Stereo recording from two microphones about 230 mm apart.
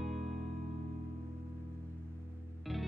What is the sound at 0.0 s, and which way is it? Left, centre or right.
Music, centre.